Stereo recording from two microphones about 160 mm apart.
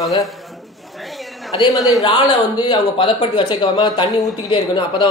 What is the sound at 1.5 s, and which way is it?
Speech, 25° left (ahead or behind).